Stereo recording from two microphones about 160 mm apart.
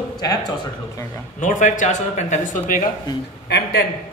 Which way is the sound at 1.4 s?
50° left (ahead or behind).